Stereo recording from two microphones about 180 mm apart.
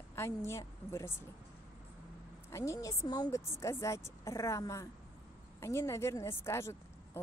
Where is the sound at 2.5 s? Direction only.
15° left (ahead or behind).